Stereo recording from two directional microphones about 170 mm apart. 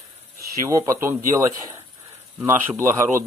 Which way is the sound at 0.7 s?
20° right (ahead or behind).